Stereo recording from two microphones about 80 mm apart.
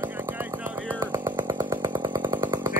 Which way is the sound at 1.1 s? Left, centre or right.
Right.